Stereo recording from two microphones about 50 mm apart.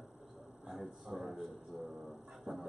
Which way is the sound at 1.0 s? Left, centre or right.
Centre.